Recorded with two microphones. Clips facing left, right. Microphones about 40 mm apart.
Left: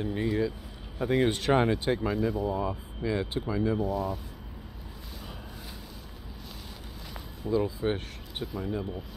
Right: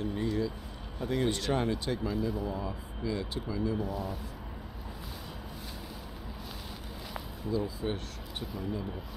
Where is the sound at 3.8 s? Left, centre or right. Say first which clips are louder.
Left 5 dB; centre.